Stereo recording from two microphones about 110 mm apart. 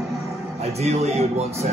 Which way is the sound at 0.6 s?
75° right (ahead or behind).